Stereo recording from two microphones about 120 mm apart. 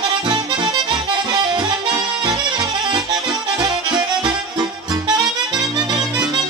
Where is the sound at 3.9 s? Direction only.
35° right (ahead or behind).